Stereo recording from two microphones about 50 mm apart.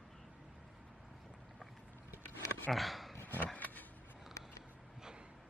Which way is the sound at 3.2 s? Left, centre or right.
Left.